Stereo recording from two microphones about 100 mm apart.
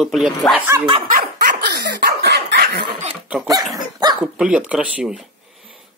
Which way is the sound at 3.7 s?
45° right (ahead or behind).